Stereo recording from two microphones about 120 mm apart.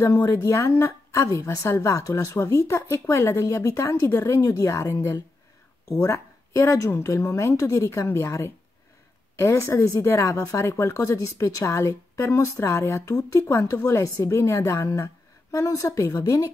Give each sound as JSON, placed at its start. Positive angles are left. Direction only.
{"t": 0.0, "sound": "a woman's voice", "side_deg": 25}